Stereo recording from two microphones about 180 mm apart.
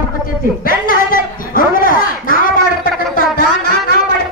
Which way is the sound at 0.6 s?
50° left (ahead or behind).